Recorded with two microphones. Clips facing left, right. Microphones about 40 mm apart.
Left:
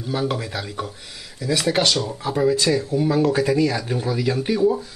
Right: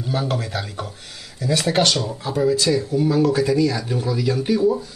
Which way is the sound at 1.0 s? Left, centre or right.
Centre.